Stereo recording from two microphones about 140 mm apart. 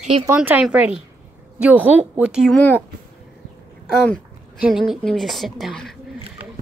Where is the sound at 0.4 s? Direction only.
10° right (ahead or behind).